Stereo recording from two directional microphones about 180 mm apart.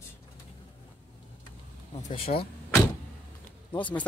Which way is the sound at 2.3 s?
40° left (ahead or behind).